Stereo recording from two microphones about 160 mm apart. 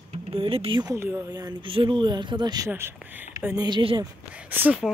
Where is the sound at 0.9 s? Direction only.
15° right (ahead or behind).